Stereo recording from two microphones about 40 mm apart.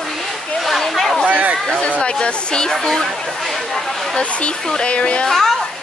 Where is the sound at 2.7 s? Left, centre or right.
Centre.